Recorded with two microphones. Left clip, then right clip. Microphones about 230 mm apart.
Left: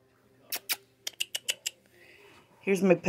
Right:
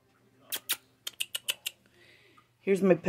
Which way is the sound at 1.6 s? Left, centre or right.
Centre.